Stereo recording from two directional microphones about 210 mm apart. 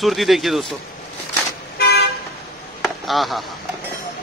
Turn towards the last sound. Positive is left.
turn(degrees=0)  # may be behind; listen again after turning